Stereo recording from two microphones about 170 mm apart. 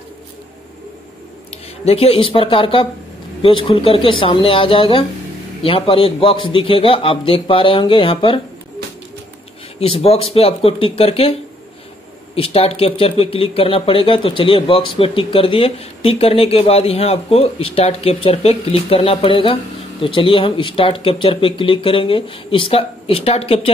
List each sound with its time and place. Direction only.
1.5 s speech: 35° left (ahead or behind)
9.8 s speech: 35° left (ahead or behind)
12.4 s speech: 35° left (ahead or behind)